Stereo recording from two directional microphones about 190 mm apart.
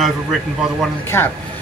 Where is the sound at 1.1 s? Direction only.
15° left (ahead or behind).